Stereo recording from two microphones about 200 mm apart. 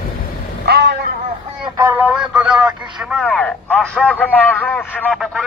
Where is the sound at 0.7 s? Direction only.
55° right (ahead or behind).